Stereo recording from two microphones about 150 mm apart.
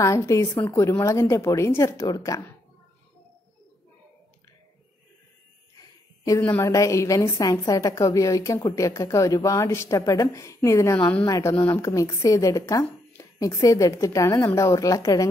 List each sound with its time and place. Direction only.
0.0 s a woman's voice: 20° left (ahead or behind)
5.8 s a sound: 25° left (ahead or behind)
6.4 s a woman's voice: 10° left (ahead or behind)
11.0 s a woman's voice: 10° left (ahead or behind)
11.2 s a woman's voice: 20° left (ahead or behind)